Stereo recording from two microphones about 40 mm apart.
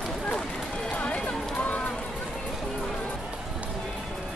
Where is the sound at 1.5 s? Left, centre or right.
Left.